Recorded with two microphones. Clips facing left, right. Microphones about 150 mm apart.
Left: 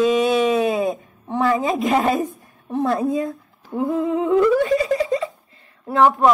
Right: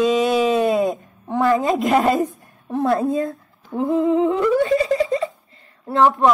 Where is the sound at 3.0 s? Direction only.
10° left (ahead or behind).